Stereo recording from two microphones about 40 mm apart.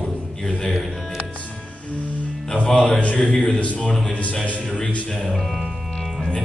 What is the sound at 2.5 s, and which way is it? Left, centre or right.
Music, left.